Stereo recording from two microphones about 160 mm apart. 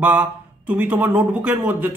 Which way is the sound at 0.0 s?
10° right (ahead or behind).